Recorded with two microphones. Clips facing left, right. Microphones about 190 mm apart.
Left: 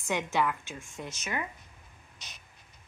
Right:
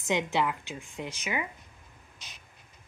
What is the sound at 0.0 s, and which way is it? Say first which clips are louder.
A woman's voice: right 1 dB; 15° right (ahead or behind).